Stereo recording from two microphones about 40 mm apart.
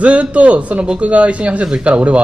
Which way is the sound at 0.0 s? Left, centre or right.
Right.